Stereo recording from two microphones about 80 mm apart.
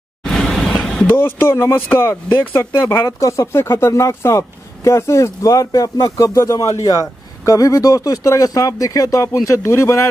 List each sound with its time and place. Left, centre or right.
0.2 s a sound: centre
1.0 s speech: left
3.2 s speech: left